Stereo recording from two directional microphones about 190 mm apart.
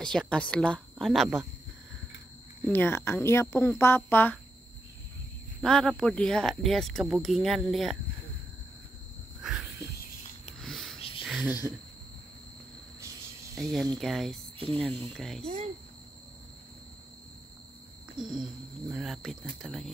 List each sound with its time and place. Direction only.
0.0 s speech: 5° left (ahead or behind)
2.6 s speech: 10° left (ahead or behind)
5.6 s speech: centre (ahead or behind)
9.4 s a sound: centre (ahead or behind)
11.0 s a sound: 30° left (ahead or behind)
11.2 s a sound: centre (ahead or behind)
13.6 s speech: centre (ahead or behind)
14.9 s speech: 30° right (ahead or behind)
15.1 s speech: centre (ahead or behind)
15.4 s speech: 30° right (ahead or behind)
18.1 s speech: 5° right (ahead or behind)